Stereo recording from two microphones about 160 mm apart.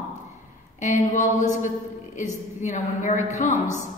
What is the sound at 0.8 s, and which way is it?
A woman's voice, 45° left (ahead or behind).